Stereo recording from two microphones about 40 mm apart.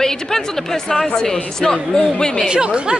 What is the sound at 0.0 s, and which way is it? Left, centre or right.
A woman's voice, centre.